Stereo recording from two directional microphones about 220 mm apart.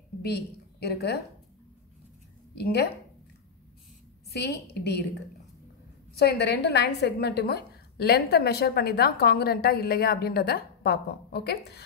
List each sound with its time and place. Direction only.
0.2 s a woman's voice: 45° left (ahead or behind)
2.5 s a woman's voice: 50° left (ahead or behind)
4.3 s a woman's voice: 50° left (ahead or behind)
6.1 s a woman's voice: 50° left (ahead or behind)